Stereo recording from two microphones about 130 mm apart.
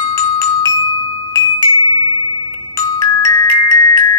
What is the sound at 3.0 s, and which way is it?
Glockenspiel, 25° left (ahead or behind).